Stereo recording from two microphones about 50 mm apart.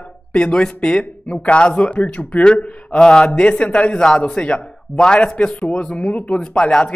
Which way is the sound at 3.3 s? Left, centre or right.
Left.